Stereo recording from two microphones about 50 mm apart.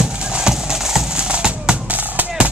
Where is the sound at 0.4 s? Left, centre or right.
Centre.